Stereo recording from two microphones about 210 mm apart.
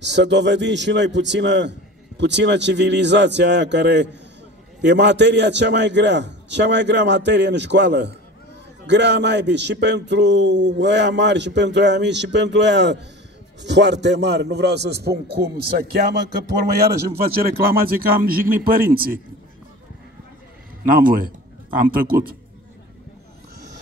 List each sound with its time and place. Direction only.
0.0 s a man's voice: 55° right (ahead or behind)
17.3 s a man's voice: 45° right (ahead or behind)
20.8 s speech: 40° right (ahead or behind)